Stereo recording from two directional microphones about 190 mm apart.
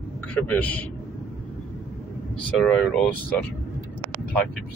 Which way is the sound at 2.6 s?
5° left (ahead or behind).